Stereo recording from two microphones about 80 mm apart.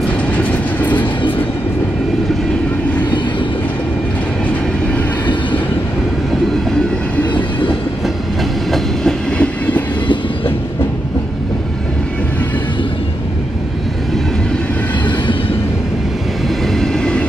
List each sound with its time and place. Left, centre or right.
0.4 s train: centre
5.2 s train: left
9.4 s train: centre
16.6 s train: centre